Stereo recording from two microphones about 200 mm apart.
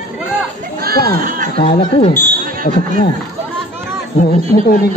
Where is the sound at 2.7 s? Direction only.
50° left (ahead or behind).